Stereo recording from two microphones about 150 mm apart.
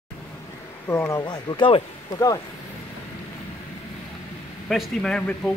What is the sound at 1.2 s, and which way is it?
Speech, 30° left (ahead or behind).